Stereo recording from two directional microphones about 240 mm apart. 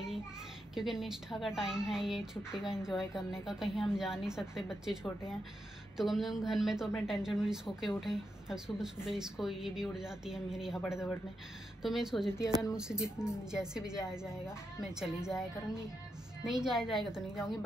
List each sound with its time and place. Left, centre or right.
0.7 s a woman's voice: centre